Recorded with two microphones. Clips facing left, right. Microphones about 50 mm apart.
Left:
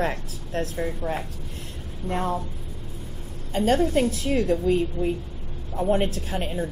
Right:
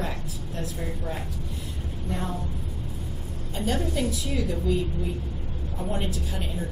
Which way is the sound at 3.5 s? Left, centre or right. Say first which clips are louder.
Left 7 dB; left.